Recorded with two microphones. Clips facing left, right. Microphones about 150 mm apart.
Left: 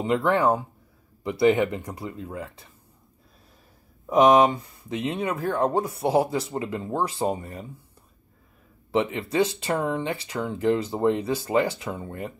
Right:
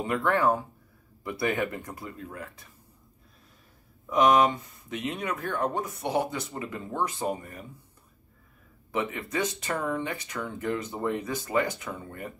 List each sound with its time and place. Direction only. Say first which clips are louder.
0.0 s speech: left 3 dB; 20° left (ahead or behind)
4.0 s speech: left 4 dB; 35° left (ahead or behind)
8.9 s speech: left 7 dB; 25° left (ahead or behind)